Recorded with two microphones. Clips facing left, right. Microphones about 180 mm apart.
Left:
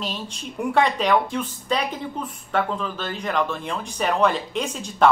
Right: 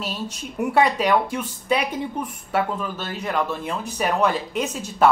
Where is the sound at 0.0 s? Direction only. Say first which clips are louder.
Right 1 dB; 5° right (ahead or behind).